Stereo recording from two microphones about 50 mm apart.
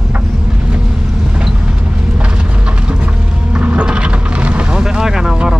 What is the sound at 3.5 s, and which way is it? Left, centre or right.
Vehicle, right.